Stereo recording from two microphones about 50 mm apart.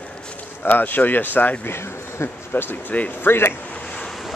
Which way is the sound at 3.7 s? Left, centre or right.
Left.